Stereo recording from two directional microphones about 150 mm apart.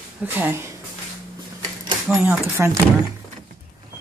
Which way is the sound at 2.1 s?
5° right (ahead or behind).